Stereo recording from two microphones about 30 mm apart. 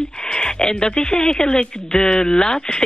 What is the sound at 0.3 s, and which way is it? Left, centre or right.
Speech, left.